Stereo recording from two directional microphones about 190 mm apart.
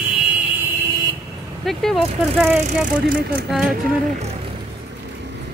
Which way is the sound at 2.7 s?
45° right (ahead or behind).